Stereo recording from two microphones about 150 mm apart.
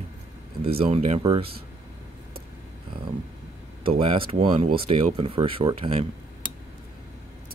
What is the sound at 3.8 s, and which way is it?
Speech, 35° right (ahead or behind).